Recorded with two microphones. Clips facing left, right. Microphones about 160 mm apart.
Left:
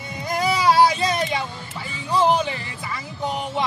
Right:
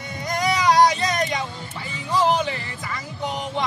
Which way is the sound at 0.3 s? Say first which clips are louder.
Left 1 dB; 5° left (ahead or behind).